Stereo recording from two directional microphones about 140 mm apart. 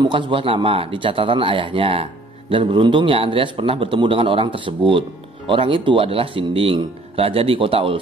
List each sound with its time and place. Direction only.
0.0 s a man's voice: 35° right (ahead or behind)